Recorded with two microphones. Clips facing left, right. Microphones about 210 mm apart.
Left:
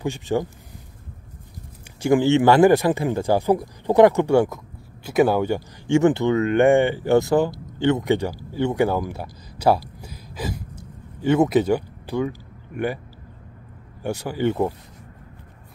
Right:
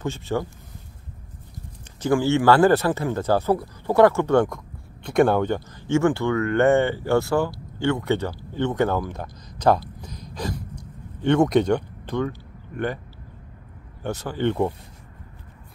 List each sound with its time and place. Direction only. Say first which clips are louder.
0.0 s speech: left 3 dB; 15° left (ahead or behind)
2.0 s speech: left 3 dB; 15° left (ahead or behind)
8.5 s a sound: left 2 dB; 10° left (ahead or behind)
14.0 s speech: left 1 dB; 10° left (ahead or behind)